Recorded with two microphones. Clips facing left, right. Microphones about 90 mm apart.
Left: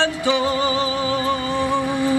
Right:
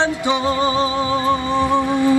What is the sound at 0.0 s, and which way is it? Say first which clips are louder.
Music: right 1 dB; 20° right (ahead or behind).